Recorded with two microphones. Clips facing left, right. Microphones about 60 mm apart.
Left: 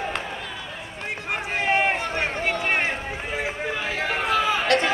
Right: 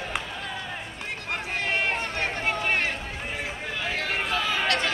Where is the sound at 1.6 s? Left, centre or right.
Left.